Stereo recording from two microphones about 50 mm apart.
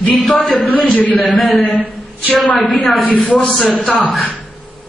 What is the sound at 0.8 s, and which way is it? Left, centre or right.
Speech, left.